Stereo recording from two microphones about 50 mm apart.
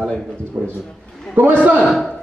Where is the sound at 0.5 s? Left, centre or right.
Right.